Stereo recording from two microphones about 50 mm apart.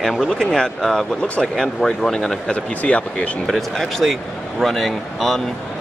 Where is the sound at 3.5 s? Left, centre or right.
Centre.